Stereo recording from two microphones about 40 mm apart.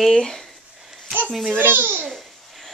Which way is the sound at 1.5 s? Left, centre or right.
Right.